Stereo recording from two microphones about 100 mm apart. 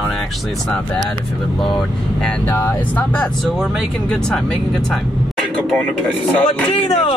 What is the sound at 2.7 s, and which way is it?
Speech, 15° left (ahead or behind).